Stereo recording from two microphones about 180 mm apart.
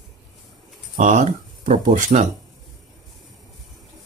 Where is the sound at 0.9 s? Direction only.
45° right (ahead or behind).